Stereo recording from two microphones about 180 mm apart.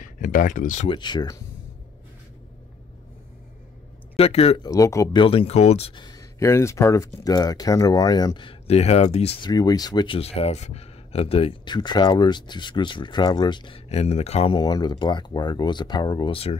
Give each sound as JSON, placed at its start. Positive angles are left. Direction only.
{"t": 0.0, "sound": "speech", "side_deg": 45}
{"t": 0.8, "sound": "speech", "side_deg": 25}
{"t": 4.2, "sound": "speech", "side_deg": 35}
{"t": 4.6, "sound": "speech", "side_deg": 15}
{"t": 5.2, "sound": "speech", "side_deg": 30}
{"t": 9.5, "sound": "speech", "side_deg": 20}